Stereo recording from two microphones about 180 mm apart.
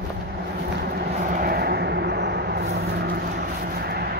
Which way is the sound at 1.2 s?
50° right (ahead or behind).